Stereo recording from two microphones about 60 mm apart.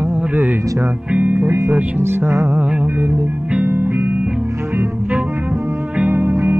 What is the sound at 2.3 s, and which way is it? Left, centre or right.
Mantra, right.